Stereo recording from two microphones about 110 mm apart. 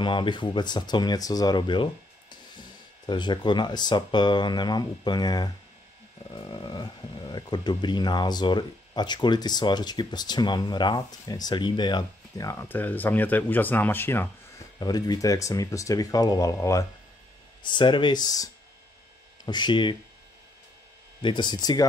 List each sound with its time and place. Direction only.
0.0 s speech: 45° left (ahead or behind)
3.1 s speech: 45° left (ahead or behind)
12.6 s speech: 15° left (ahead or behind)
14.8 s speech: 35° left (ahead or behind)
17.6 s speech: 45° left (ahead or behind)
21.2 s speech: 45° left (ahead or behind)